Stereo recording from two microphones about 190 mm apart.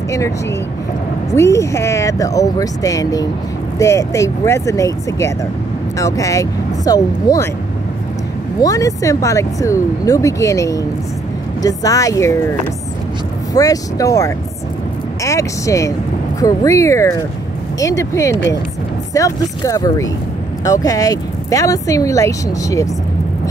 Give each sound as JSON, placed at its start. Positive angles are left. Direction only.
{"t": 0.1, "sound": "speech", "side_deg": 15}
{"t": 8.5, "sound": "speech", "side_deg": 15}
{"t": 13.5, "sound": "speech", "side_deg": 20}